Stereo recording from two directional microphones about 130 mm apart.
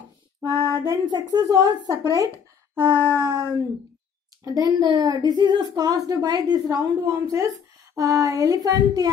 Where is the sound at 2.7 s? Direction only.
15° right (ahead or behind).